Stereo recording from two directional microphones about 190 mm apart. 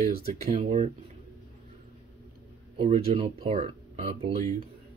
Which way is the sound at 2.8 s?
30° right (ahead or behind).